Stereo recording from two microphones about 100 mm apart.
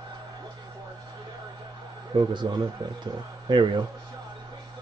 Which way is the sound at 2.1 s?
45° right (ahead or behind).